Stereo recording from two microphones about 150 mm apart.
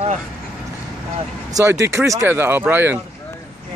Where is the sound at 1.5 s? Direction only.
20° right (ahead or behind).